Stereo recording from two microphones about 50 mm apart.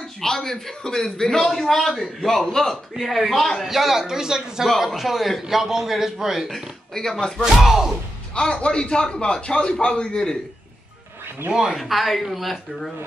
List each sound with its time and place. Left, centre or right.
0.2 s a man's voice: centre
6.5 s a man's voice: centre
7.4 s a man's voice: centre
8.4 s a man's voice: centre
11.5 s a man's voice: centre